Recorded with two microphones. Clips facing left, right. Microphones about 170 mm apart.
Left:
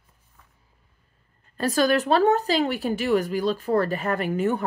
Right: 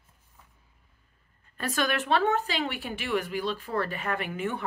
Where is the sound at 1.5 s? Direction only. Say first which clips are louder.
Left 8 dB; 35° left (ahead or behind).